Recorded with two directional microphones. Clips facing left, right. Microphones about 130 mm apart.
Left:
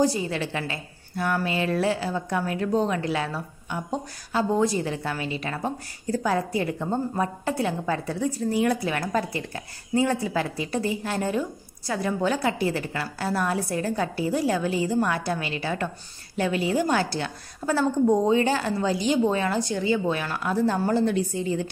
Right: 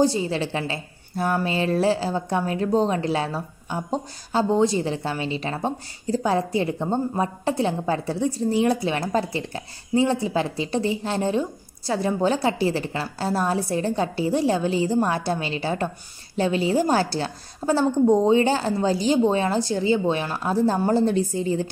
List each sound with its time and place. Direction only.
0.0 s a woman's voice: 30° right (ahead or behind)